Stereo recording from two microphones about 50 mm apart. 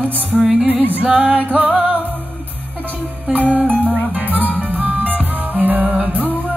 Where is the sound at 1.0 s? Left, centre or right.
Right.